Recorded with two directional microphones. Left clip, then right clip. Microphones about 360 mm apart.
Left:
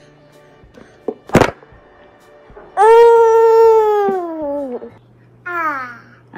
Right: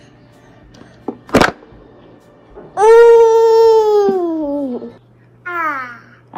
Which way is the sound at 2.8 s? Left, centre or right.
Left.